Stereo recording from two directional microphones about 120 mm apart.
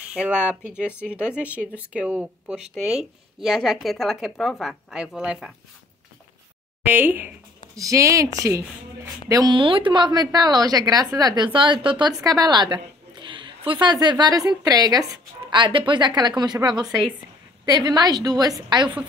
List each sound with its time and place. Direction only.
0.1 s speech: 10° right (ahead or behind)
6.8 s speech: 15° right (ahead or behind)
7.7 s speech: 25° right (ahead or behind)
9.3 s a woman's voice: 35° right (ahead or behind)
12.2 s a woman's voice: 30° right (ahead or behind)
15.5 s a woman's voice: 40° right (ahead or behind)
16.8 s speech: centre (ahead or behind)
17.6 s a woman's voice: 35° right (ahead or behind)